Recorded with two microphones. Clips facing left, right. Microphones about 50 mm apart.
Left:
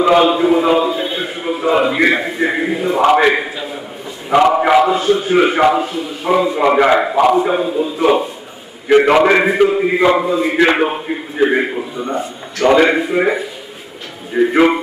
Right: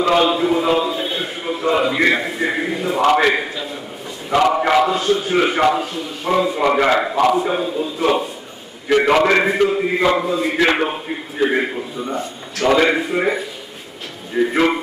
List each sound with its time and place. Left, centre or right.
0.0 s a man's voice: centre